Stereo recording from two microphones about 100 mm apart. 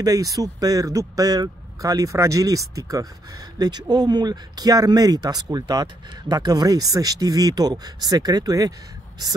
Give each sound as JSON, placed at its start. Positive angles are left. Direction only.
{"t": 0.0, "sound": "speech", "side_deg": -35}